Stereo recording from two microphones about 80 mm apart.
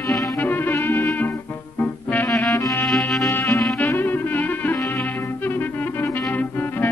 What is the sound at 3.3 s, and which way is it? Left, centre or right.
Music, left.